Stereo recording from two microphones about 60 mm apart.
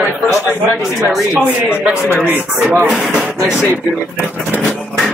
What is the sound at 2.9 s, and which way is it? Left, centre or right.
Speech, centre.